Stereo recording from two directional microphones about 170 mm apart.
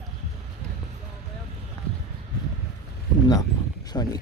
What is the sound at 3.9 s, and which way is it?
Speech, 25° left (ahead or behind).